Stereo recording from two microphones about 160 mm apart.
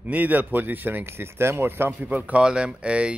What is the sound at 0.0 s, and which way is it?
Speech, 10° right (ahead or behind).